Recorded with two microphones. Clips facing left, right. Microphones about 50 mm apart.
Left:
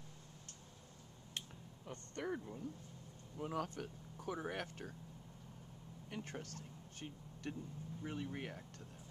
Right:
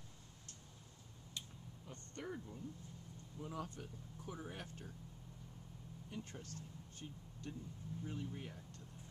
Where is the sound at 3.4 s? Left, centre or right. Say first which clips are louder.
Left 5 dB; left.